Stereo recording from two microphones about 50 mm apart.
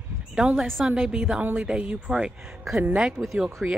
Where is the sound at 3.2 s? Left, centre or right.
Right.